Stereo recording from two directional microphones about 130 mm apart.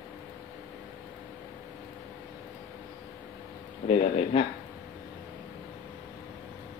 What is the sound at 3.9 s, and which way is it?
Speech, 50° left (ahead or behind).